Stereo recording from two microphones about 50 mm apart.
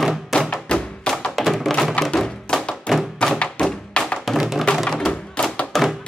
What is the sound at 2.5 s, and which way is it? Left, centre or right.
Thump, left.